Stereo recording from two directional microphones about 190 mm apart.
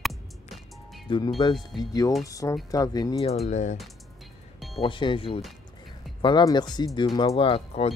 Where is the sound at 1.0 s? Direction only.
25° left (ahead or behind).